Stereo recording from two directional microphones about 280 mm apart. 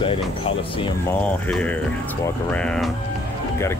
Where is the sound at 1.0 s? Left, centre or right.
Centre.